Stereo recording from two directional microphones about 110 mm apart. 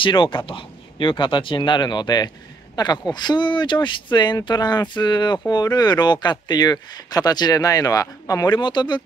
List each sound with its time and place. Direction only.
0.0 s speech: 50° left (ahead or behind)